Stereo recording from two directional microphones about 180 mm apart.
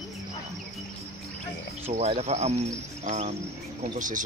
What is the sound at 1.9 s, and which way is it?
Speech, 35° right (ahead or behind).